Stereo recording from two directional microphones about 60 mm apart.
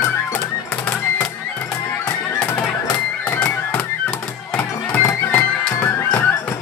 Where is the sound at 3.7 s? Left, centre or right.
Centre.